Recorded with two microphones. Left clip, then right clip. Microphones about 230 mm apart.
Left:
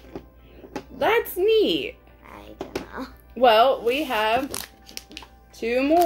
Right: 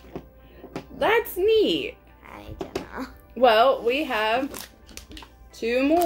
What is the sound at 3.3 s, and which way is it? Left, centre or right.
Speech, centre.